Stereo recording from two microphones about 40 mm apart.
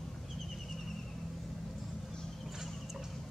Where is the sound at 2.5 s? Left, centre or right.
Centre.